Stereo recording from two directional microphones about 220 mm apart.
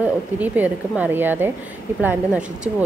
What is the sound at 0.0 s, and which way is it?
A woman's voice, 5° right (ahead or behind).